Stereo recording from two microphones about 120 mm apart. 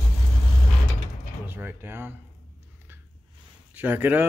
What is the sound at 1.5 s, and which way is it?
Speech, 15° right (ahead or behind).